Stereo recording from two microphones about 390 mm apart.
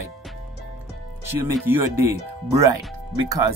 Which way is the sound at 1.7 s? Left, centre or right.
Right.